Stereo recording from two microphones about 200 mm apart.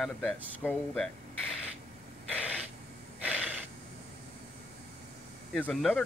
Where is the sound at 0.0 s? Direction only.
5° left (ahead or behind).